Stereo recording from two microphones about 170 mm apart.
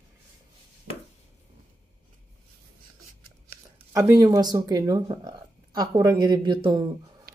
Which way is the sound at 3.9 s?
20° right (ahead or behind).